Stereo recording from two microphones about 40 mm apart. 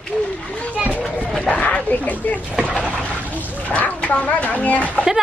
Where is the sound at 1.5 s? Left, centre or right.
Left.